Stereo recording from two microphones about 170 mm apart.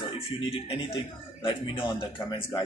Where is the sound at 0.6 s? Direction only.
30° left (ahead or behind).